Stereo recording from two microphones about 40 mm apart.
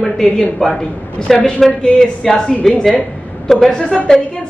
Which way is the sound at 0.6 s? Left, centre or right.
Left.